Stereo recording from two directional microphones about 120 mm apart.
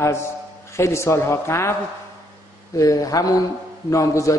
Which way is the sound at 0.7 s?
25° left (ahead or behind).